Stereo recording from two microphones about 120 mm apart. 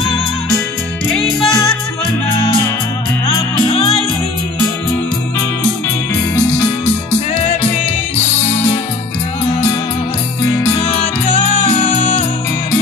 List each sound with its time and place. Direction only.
1.1 s music: centre (ahead or behind)
11.8 s music: 70° left (ahead or behind)